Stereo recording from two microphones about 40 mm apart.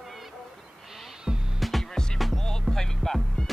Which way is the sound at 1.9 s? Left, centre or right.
Centre.